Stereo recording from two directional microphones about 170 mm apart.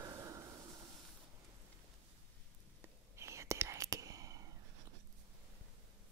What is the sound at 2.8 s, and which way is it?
Whispering, 15° right (ahead or behind).